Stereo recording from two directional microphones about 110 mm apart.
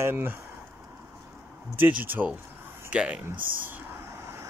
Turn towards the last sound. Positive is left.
turn(degrees=-25)  # may be behind; listen again after turning